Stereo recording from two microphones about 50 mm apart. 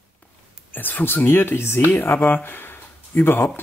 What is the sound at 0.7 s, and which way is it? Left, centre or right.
Speech, left.